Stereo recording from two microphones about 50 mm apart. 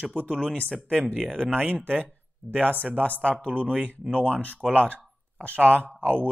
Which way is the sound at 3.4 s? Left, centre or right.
Right.